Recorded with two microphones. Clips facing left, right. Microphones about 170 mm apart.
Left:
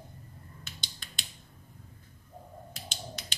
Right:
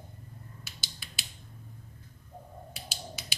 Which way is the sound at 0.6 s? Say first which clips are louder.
Even; 5° right (ahead or behind).